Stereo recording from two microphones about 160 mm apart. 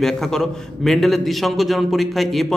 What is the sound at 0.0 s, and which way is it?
Speech, centre (ahead or behind).